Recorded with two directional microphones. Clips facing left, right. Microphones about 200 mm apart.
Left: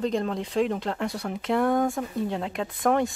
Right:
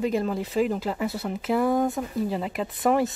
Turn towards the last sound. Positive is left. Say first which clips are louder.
# right 1 dB
turn(degrees=-5)  # may be behind; listen again after turning